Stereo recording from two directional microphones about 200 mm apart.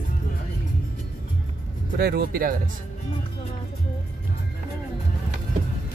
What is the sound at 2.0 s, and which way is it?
Speech, 50° right (ahead or behind).